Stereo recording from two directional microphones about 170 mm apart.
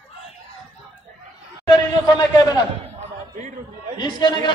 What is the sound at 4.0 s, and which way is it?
Speech, 25° left (ahead or behind).